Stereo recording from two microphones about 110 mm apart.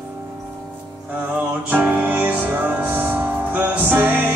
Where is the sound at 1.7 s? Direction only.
15° right (ahead or behind).